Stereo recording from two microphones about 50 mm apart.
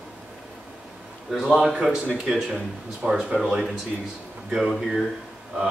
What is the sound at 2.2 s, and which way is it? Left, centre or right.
Speech, centre.